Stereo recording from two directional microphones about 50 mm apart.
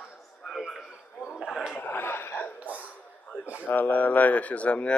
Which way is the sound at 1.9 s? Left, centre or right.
Left.